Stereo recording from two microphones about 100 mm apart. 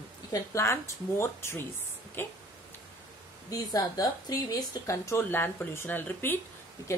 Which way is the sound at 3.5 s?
35° left (ahead or behind).